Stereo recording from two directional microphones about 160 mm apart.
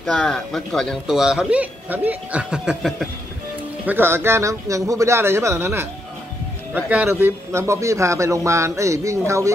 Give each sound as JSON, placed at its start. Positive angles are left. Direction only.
{"t": 0.0, "sound": "speech", "side_deg": 5}
{"t": 3.8, "sound": "a man's voice", "side_deg": -15}